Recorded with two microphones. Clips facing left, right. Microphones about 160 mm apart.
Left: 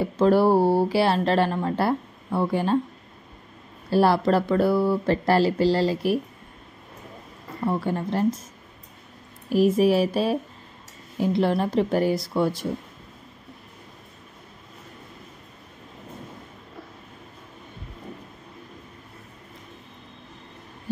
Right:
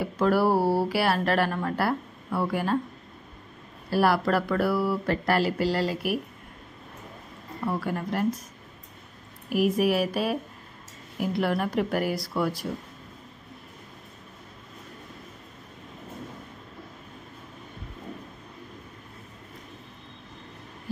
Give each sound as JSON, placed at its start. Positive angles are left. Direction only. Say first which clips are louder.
{"t": 0.0, "sound": "speech", "louder": "left 4 dB", "side_deg": 25}
{"t": 3.9, "sound": "speech", "louder": "left 4 dB", "side_deg": 25}
{"t": 7.6, "sound": "speech", "louder": "left 4 dB", "side_deg": 25}
{"t": 9.5, "sound": "speech", "louder": "left 4 dB", "side_deg": 30}